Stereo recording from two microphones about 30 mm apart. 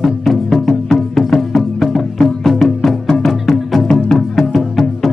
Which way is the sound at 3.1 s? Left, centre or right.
Centre.